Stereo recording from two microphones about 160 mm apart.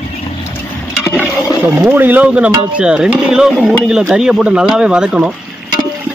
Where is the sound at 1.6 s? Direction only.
15° right (ahead or behind).